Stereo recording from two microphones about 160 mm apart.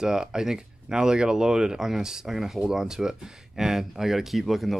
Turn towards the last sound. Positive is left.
turn(degrees=0)  # may be behind; listen again after turning